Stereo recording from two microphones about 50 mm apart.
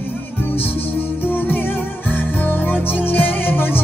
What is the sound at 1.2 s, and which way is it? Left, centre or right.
Music, left.